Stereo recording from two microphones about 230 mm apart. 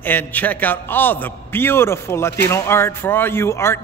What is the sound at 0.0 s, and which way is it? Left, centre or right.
Speech, centre.